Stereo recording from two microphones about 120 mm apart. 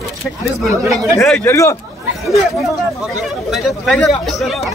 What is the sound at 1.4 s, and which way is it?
Speech, 25° left (ahead or behind).